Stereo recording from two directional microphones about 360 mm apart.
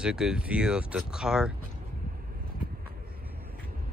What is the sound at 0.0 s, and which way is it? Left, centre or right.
Speech, centre.